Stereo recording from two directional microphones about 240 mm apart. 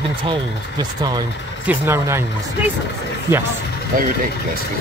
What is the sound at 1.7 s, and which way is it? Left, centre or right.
Speech, centre.